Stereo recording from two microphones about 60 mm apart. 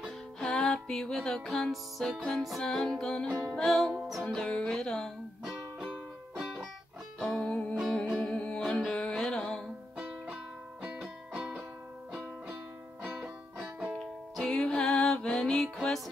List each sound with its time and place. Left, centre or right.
0.4 s music: centre
5.4 s music: centre
7.3 s music: centre
9.9 s music: centre
13.0 s music: right
13.9 s music: centre